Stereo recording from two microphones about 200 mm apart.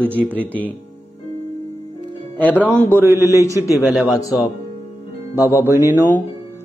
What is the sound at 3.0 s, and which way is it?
Music, 15° right (ahead or behind).